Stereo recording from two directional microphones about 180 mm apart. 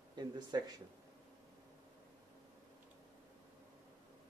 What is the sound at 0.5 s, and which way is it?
Speech, 25° right (ahead or behind).